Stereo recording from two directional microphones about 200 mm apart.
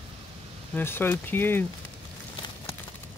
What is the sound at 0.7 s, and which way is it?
Speech, 10° left (ahead or behind).